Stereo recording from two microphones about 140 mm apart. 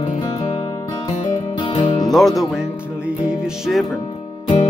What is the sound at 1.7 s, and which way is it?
Music, 35° left (ahead or behind).